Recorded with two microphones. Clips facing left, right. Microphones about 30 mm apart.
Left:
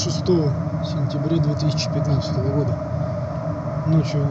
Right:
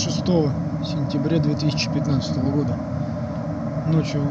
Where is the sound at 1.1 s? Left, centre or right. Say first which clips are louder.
Right 1 dB; right.